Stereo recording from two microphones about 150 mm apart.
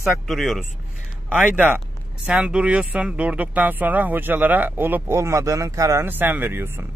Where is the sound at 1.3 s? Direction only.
10° right (ahead or behind).